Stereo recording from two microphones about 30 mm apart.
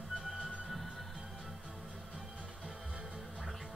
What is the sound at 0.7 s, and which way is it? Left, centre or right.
Music, centre.